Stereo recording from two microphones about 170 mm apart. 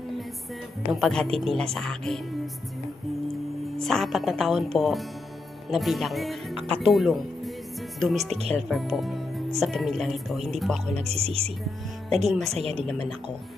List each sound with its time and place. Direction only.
0.9 s speech: centre (ahead or behind)
3.7 s speech: centre (ahead or behind)
8.3 s speech: 35° right (ahead or behind)
8.5 s speech: centre (ahead or behind)
11.0 s speech: 35° right (ahead or behind)